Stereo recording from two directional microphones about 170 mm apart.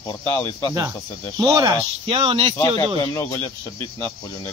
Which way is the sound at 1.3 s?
20° right (ahead or behind).